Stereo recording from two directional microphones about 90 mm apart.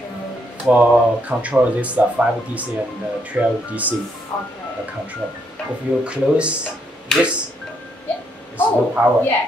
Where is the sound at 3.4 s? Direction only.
15° right (ahead or behind).